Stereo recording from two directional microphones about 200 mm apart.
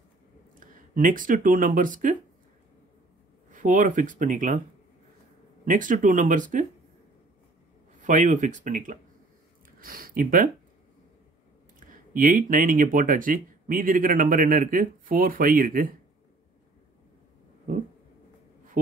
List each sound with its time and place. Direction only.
0.6 s speech: 40° right (ahead or behind)
3.4 s speech: 40° right (ahead or behind)
5.7 s speech: 40° right (ahead or behind)
8.0 s speech: 40° right (ahead or behind)
12.1 s speech: 40° right (ahead or behind)